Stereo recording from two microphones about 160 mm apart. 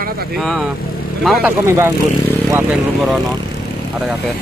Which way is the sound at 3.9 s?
Centre (ahead or behind).